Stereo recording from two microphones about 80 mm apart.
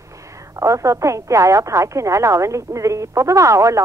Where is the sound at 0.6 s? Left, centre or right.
Right.